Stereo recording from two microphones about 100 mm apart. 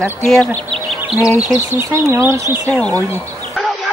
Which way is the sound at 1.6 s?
30° right (ahead or behind).